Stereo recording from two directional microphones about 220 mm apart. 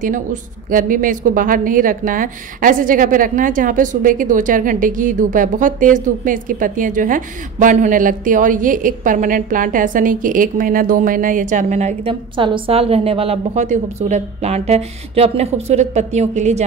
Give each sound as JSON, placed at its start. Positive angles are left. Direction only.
{"t": 0.7, "sound": "a woman's voice", "side_deg": -40}